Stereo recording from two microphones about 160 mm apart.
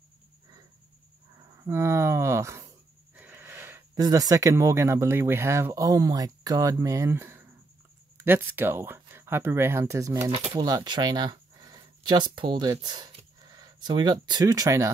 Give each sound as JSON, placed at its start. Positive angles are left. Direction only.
{"t": 1.6, "sound": "speech", "side_deg": -15}
{"t": 3.2, "sound": "a sound", "side_deg": -10}
{"t": 4.0, "sound": "speech", "side_deg": -20}
{"t": 10.3, "sound": "speech", "side_deg": -35}
{"t": 10.6, "sound": "speech", "side_deg": -25}